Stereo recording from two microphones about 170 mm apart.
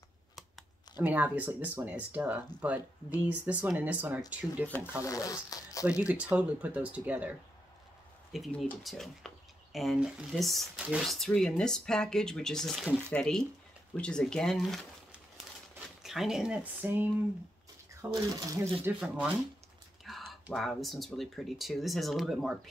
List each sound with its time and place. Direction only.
1.0 s speech: 10° right (ahead or behind)
4.6 s speech: 10° left (ahead or behind)
5.9 s speech: 5° right (ahead or behind)
16.0 s speech: centre (ahead or behind)
18.1 s speech: 20° right (ahead or behind); by 22.6 s centre (ahead or behind)